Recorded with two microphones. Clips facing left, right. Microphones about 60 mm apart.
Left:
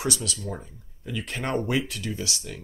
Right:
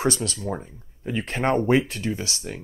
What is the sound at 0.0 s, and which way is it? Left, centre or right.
Speech, right.